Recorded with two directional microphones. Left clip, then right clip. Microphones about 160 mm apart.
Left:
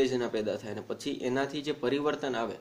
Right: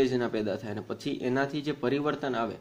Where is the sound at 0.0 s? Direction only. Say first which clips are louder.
Right 1 dB; 30° right (ahead or behind).